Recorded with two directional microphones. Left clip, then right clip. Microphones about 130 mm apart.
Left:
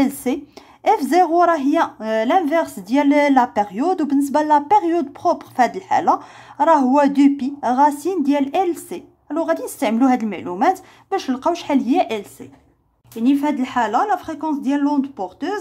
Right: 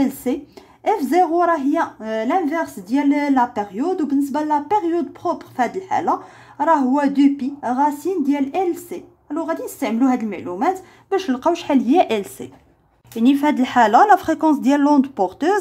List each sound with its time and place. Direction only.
0.0 s a woman's voice: 15° left (ahead or behind)
11.1 s speech: centre (ahead or behind); by 15.5 s 30° right (ahead or behind)